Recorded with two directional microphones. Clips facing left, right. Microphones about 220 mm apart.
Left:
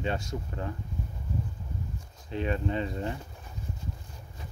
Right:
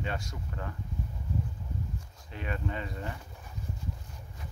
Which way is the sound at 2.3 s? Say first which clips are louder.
Left 7 dB; 25° left (ahead or behind).